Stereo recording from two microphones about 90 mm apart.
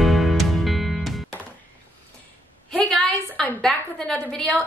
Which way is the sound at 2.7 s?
5° left (ahead or behind).